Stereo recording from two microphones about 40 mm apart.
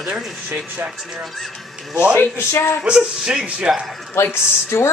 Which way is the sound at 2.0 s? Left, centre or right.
Left.